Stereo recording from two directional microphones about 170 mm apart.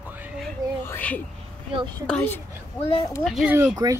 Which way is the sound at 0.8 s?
10° left (ahead or behind).